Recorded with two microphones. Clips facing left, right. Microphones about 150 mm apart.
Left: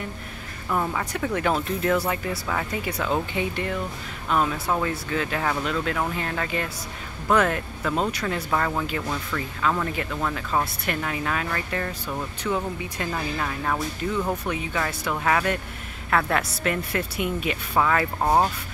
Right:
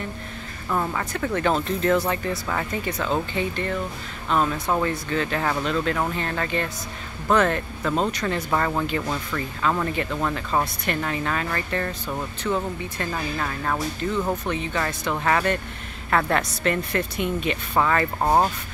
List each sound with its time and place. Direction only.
0.7 s speech: 5° left (ahead or behind)
8.5 s speech: 5° right (ahead or behind)